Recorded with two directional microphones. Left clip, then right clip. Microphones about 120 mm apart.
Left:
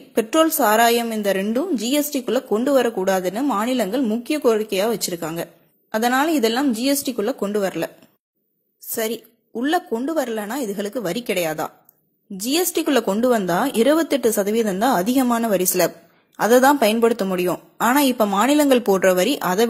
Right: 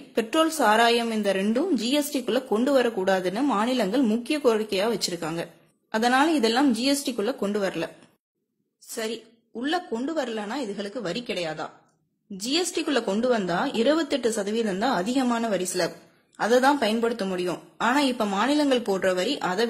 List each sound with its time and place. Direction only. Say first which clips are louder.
0.1 s a woman's voice: left 5 dB; 35° left (ahead or behind)
3.3 s a woman's voice: left 3 dB; 15° left (ahead or behind)
4.2 s a woman's voice: left 4 dB; 30° left (ahead or behind)
8.9 s a woman's voice: left 6 dB; 45° left (ahead or behind)
17.8 s a woman's voice: left 6 dB; 45° left (ahead or behind)